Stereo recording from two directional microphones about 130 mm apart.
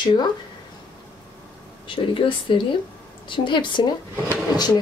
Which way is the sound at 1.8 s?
40° left (ahead or behind).